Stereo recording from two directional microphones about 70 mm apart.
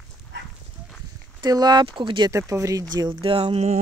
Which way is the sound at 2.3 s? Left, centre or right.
Right.